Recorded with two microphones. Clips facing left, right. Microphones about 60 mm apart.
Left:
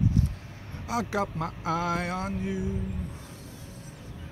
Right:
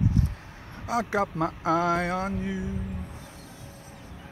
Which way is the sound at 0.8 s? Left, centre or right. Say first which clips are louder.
Right 3 dB; right.